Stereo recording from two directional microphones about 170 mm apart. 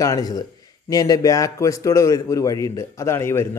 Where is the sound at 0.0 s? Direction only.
20° left (ahead or behind).